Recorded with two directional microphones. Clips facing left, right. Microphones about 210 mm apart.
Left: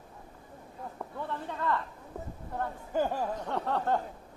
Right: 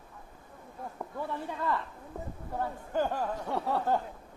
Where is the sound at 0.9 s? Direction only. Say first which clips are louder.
Right 1 dB; 10° right (ahead or behind).